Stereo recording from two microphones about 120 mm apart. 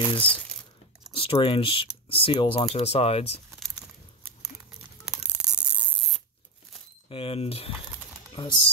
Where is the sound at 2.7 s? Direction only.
60° left (ahead or behind).